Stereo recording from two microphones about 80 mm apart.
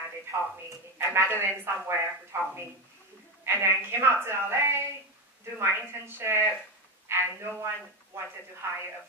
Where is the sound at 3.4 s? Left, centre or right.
Right.